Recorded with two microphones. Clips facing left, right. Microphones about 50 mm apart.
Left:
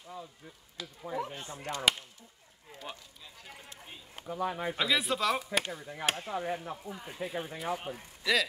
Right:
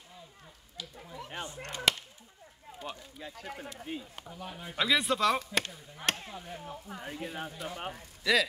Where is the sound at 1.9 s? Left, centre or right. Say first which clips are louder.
Even; centre.